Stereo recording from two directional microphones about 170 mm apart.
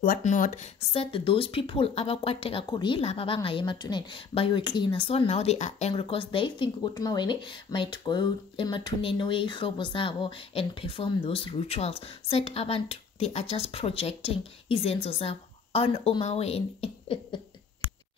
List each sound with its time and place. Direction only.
0.0 s speech: 50° left (ahead or behind)
0.9 s speech: 30° left (ahead or behind)